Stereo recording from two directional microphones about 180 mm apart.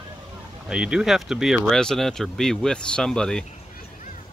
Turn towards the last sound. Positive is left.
turn(degrees=5)  # may be behind; listen again after turning